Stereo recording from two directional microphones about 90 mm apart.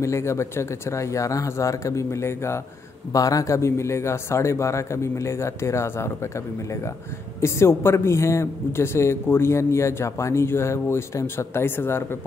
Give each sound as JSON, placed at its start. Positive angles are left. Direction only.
{"t": 0.0, "sound": "a man's voice", "side_deg": 30}